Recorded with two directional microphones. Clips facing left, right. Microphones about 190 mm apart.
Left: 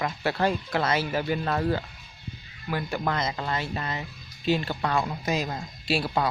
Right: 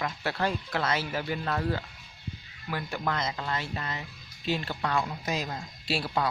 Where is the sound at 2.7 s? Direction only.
15° left (ahead or behind).